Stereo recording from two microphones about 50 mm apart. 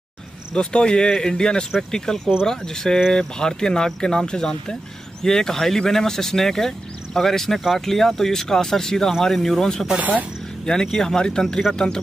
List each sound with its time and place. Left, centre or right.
0.6 s speech: centre
9.9 s speech: right
10.6 s speech: centre